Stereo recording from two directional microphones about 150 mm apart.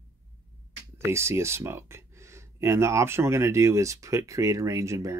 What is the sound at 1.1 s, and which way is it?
Speech, 15° right (ahead or behind).